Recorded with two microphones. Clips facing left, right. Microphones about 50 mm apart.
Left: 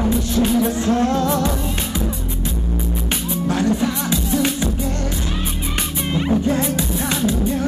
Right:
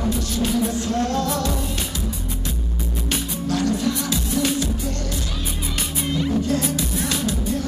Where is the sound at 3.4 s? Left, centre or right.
Left.